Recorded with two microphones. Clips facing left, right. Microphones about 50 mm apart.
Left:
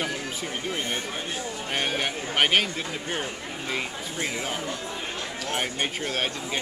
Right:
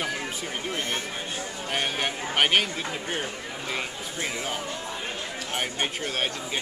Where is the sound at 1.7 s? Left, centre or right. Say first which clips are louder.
Even; centre.